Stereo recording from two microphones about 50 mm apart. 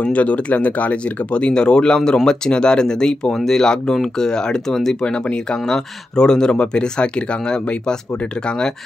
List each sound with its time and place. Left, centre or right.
0.0 s speech: left; by 4.9 s centre
5.0 s speech: centre